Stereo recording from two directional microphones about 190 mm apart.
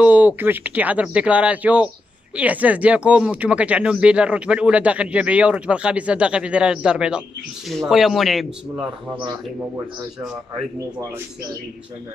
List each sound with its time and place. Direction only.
0.0 s speech: 10° right (ahead or behind)